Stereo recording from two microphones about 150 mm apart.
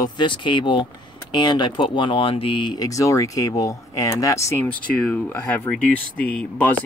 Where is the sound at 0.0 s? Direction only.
30° left (ahead or behind).